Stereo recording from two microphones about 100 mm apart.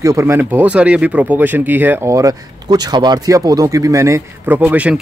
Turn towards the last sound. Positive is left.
turn(degrees=-15)  # may be behind; listen again after turning